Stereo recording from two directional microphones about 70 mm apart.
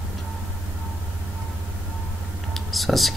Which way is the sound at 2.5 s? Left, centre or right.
Centre.